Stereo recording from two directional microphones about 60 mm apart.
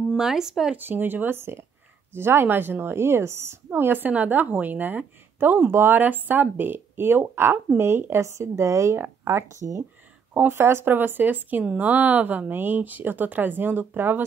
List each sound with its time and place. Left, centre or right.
0.2 s speech: centre
0.7 s a woman's voice: right
5.7 s speech: right
5.9 s a woman's voice: right
8.9 s a woman's voice: right